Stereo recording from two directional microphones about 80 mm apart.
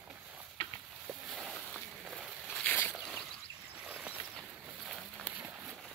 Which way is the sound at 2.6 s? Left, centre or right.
Centre.